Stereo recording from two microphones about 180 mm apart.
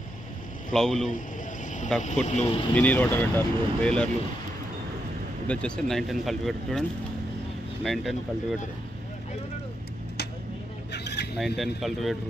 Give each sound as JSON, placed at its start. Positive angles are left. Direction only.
{"t": 0.7, "sound": "speech", "side_deg": 0}
{"t": 2.0, "sound": "speech", "side_deg": 40}
{"t": 2.7, "sound": "speech", "side_deg": 10}
{"t": 5.5, "sound": "speech", "side_deg": 5}
{"t": 7.8, "sound": "speech", "side_deg": 0}
{"t": 10.9, "sound": "a sound", "side_deg": 70}
{"t": 11.3, "sound": "speech", "side_deg": 0}